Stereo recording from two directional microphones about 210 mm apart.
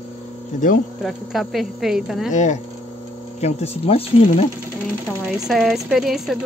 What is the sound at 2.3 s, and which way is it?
Speech, 35° left (ahead or behind).